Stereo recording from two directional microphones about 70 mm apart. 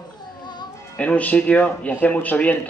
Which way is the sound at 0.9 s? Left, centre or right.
Left.